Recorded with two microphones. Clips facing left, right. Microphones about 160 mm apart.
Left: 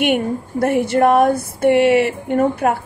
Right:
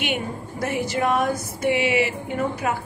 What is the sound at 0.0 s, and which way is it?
Speech, 55° left (ahead or behind).